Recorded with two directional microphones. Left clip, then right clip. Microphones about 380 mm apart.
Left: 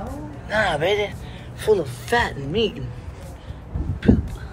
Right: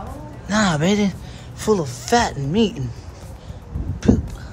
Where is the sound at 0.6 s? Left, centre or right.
Right.